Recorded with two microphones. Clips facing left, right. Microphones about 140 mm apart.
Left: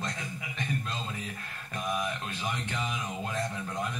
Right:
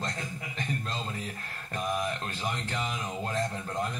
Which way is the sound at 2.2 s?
35° right (ahead or behind).